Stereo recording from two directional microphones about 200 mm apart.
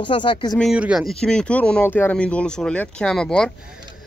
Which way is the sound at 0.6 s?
5° right (ahead or behind).